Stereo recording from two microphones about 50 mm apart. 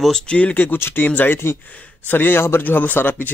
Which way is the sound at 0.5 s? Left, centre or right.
Left.